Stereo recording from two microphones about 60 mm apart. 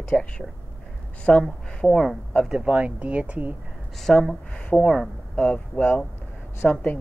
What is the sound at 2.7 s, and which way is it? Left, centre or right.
Speech, right.